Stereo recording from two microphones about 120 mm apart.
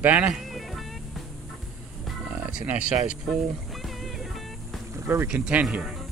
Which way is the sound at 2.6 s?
10° right (ahead or behind).